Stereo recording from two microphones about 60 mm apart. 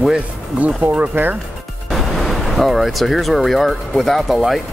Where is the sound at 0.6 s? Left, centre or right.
Right.